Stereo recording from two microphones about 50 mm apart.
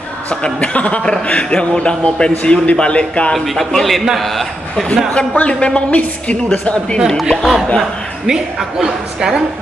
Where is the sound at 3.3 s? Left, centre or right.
Centre.